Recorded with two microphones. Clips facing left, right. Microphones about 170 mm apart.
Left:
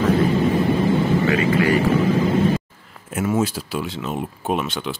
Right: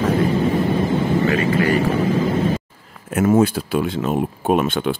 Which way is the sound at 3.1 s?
60° right (ahead or behind).